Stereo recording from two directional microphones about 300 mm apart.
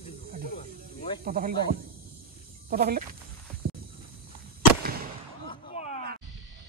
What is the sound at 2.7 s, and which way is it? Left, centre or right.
Speech, right.